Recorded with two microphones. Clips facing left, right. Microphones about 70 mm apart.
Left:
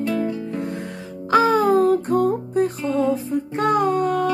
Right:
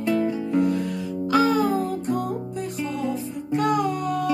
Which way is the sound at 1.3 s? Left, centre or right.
Left.